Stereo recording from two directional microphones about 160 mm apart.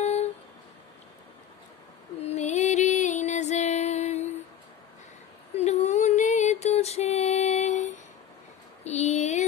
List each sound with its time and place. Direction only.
0.0 s music: 45° left (ahead or behind)
2.1 s music: 45° left (ahead or behind)
5.6 s a sound: 45° left (ahead or behind)